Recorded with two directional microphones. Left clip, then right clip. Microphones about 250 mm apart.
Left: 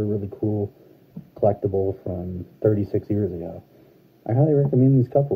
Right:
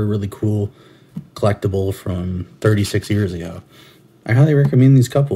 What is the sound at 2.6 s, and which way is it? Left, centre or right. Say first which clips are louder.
Speech: right 3 dB; centre.